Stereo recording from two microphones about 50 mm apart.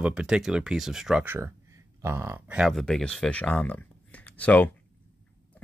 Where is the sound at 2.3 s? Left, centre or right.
Right.